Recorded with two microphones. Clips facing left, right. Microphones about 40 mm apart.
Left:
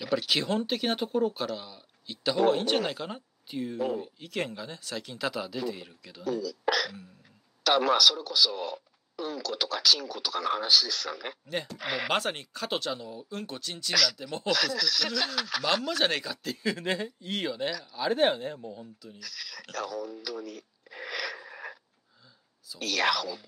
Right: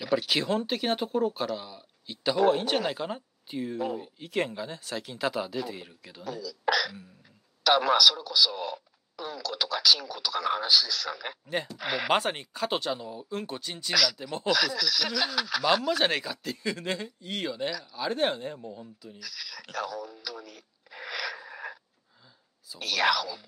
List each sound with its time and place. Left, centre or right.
0.0 s speech: centre
16.5 s speech: centre
20.9 s wheeze: centre
22.8 s speech: centre
23.0 s speech: centre